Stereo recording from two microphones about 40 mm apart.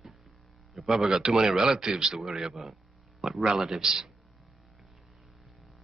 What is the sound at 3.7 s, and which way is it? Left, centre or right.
Speech, centre.